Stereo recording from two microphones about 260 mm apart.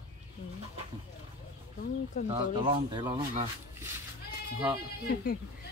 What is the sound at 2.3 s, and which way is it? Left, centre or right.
Speech, centre.